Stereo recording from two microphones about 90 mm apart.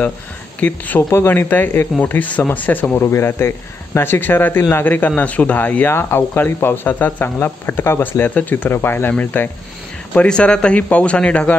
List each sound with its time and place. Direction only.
0.6 s speech: 15° left (ahead or behind)